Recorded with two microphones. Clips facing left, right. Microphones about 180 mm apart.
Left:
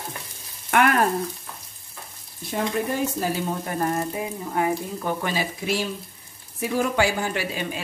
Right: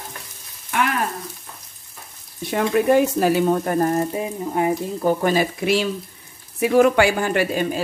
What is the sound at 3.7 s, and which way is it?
Speech, 35° right (ahead or behind).